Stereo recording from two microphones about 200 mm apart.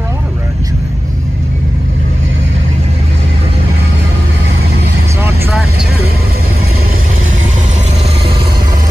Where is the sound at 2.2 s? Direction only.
70° right (ahead or behind).